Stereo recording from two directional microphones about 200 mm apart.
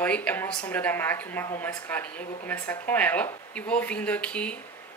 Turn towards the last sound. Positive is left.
turn(degrees=5)  # may be behind; listen again after turning